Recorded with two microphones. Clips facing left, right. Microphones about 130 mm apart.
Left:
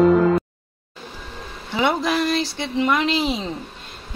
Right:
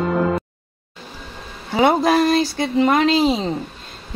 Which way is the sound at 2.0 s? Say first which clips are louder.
Right 5 dB; 40° right (ahead or behind).